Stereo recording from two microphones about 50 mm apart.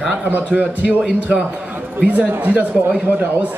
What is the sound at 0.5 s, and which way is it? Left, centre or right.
A man's voice, right.